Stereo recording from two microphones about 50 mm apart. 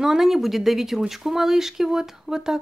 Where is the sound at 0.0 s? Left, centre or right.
Centre.